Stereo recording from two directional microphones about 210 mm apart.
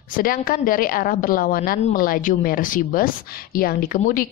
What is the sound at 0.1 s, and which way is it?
A woman's voice, 40° left (ahead or behind).